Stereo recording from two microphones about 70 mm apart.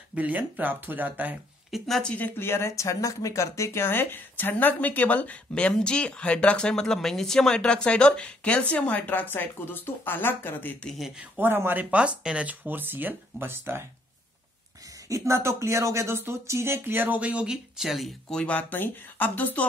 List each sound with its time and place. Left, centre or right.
0.1 s speech: right
1.7 s speech: centre
2.0 s speech: left
2.4 s speech: left
11.3 s speech: right; by 12.5 s centre
12.6 s speech: right
15.0 s speech: right
17.2 s speech: centre
18.3 s speech: centre